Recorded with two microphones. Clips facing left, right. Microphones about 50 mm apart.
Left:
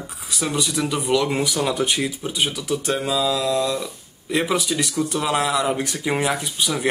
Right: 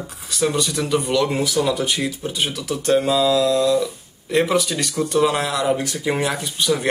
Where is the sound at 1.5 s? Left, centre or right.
Left.